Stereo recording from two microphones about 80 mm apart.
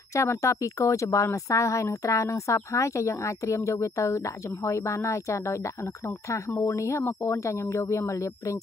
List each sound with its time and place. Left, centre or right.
0.1 s a woman's voice: left
6.7 s a woman's voice: left